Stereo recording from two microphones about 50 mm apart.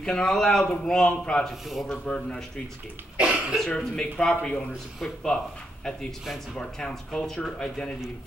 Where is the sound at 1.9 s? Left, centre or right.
Centre.